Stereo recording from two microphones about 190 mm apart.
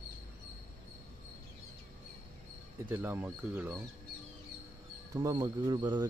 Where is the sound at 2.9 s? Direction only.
10° right (ahead or behind).